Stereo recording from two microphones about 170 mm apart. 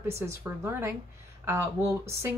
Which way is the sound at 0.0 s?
15° right (ahead or behind).